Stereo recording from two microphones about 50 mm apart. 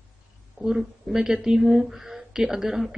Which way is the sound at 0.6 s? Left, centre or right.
Centre.